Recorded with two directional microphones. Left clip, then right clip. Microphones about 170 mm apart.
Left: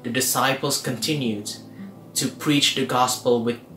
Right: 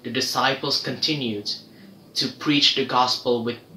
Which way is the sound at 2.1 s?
10° left (ahead or behind).